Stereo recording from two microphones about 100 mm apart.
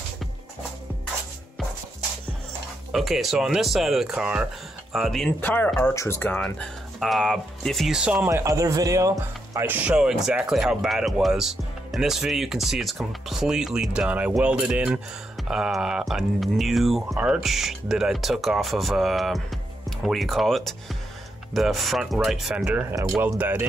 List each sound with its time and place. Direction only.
2.9 s speech: centre (ahead or behind)
5.4 s speech: 20° left (ahead or behind)
6.4 s speech: 5° left (ahead or behind)
8.3 s speech: 30° right (ahead or behind)
9.2 s speech: 25° right (ahead or behind); by 22.8 s 5° right (ahead or behind)
23.1 s speech: 20° right (ahead or behind)